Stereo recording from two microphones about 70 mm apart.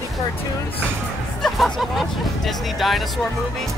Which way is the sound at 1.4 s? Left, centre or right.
Centre.